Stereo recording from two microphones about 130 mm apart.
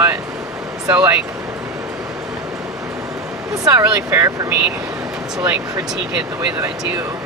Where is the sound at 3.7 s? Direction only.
15° right (ahead or behind).